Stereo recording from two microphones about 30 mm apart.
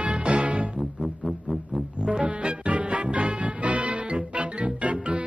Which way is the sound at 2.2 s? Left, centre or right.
Right.